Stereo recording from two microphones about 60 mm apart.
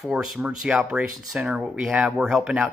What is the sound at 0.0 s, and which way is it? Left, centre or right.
Speech, centre.